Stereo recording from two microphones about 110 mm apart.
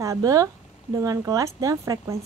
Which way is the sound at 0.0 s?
30° right (ahead or behind).